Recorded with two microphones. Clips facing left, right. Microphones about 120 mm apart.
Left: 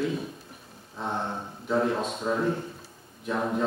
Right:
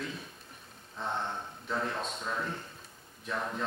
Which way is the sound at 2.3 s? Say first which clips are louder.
Left 10 dB; 15° left (ahead or behind).